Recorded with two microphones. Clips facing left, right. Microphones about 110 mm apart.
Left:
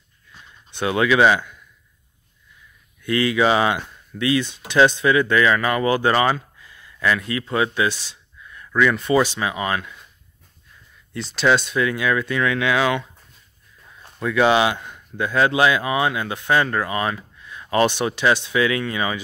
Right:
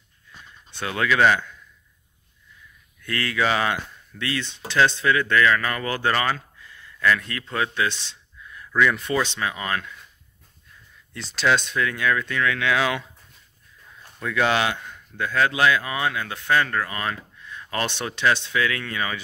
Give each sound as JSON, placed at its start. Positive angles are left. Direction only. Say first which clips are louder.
{"t": 0.7, "sound": "speech", "louder": "left 5 dB", "side_deg": 15}
{"t": 3.0, "sound": "speech", "louder": "left 6 dB", "side_deg": 15}
{"t": 11.1, "sound": "speech", "louder": "left 3 dB", "side_deg": 0}
{"t": 12.7, "sound": "speech", "louder": "left 5 dB", "side_deg": 0}
{"t": 14.2, "sound": "speech", "louder": "left 5 dB", "side_deg": 10}